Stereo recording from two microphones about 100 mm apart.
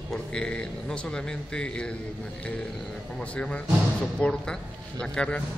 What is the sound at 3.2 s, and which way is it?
A man's voice, 10° left (ahead or behind).